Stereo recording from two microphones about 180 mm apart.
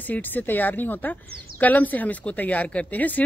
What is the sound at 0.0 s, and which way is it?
Speech, 10° left (ahead or behind).